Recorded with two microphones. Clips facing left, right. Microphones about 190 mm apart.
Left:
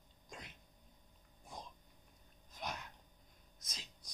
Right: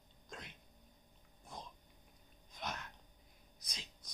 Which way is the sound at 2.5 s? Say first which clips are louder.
Even; 10° left (ahead or behind).